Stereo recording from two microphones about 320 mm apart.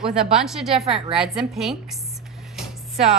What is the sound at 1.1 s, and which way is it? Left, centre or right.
Speech, centre.